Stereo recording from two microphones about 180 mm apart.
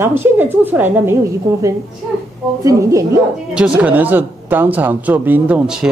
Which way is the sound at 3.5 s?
5° right (ahead or behind).